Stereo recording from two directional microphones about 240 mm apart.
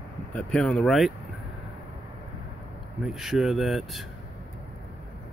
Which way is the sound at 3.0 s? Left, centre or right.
Centre.